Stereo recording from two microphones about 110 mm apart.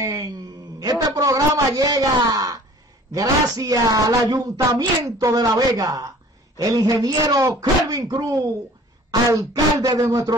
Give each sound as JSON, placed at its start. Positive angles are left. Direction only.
{"t": 0.0, "sound": "speech", "side_deg": -30}
{"t": 9.5, "sound": "speech", "side_deg": -35}